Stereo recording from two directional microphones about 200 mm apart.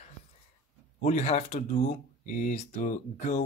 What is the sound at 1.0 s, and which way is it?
Speech, 35° left (ahead or behind).